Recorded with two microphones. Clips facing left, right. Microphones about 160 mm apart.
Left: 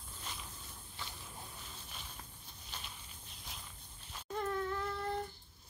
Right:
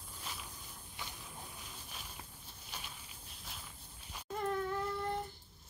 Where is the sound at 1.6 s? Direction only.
5° right (ahead or behind).